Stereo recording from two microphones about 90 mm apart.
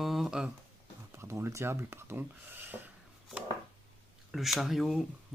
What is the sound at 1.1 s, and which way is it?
Speech, 30° right (ahead or behind).